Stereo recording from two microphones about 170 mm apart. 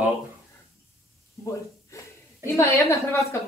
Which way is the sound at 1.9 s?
15° left (ahead or behind).